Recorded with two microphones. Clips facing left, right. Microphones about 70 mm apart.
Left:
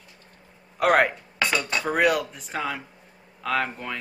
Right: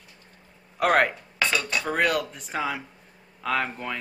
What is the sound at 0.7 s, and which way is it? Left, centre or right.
Speech, centre.